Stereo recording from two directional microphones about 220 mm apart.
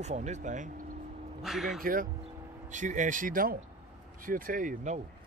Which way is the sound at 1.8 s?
40° right (ahead or behind).